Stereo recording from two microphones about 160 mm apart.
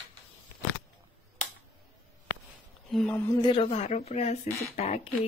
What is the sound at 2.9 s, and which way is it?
Speech, 10° left (ahead or behind).